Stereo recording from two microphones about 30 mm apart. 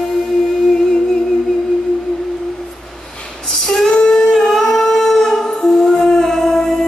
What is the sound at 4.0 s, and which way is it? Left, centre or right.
Humming, centre.